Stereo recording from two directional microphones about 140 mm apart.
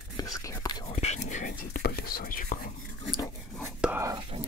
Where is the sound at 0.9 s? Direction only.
55° left (ahead or behind); by 2.7 s 85° left.